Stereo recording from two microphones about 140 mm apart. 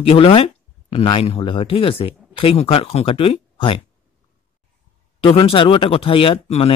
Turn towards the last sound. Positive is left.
turn(degrees=45)  # may be behind; listen again after turning